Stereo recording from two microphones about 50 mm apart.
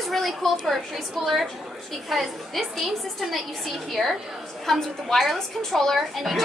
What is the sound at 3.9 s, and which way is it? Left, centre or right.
A woman's voice, centre.